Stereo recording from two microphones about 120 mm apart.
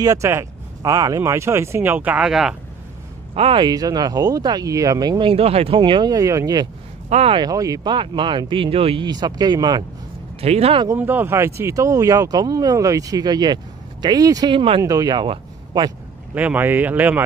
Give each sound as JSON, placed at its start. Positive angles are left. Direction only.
{"t": 0.0, "sound": "speech", "side_deg": -25}
{"t": 3.3, "sound": "speech", "side_deg": -45}
{"t": 5.2, "sound": "speech", "side_deg": -55}
{"t": 5.8, "sound": "speech", "side_deg": -40}
{"t": 7.1, "sound": "speech", "side_deg": -60}
{"t": 7.3, "sound": "speech", "side_deg": -30}
{"t": 10.4, "sound": "speech", "side_deg": -60}
{"t": 11.0, "sound": "speech", "side_deg": -15}
{"t": 14.5, "sound": "speech", "side_deg": -50}
{"t": 14.8, "sound": "speech", "side_deg": -30}
{"t": 16.3, "sound": "speech", "side_deg": -15}